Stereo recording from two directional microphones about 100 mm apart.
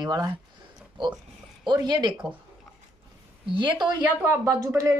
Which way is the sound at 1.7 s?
45° right (ahead or behind).